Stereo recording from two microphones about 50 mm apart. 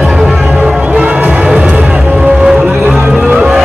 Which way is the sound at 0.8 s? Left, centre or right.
Right.